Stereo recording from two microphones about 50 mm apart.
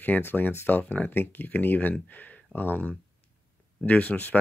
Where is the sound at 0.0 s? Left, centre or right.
Left.